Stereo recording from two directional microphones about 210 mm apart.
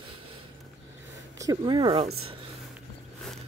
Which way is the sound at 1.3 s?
15° right (ahead or behind).